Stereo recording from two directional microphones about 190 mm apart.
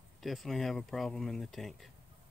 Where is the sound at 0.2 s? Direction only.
Centre (ahead or behind).